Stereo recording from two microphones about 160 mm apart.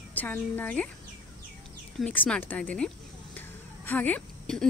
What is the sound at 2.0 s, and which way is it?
A woman's voice, 5° left (ahead or behind).